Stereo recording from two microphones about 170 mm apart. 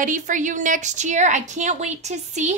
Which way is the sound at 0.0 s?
50° right (ahead or behind).